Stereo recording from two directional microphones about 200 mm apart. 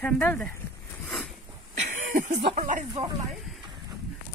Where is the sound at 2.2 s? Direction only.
35° right (ahead or behind).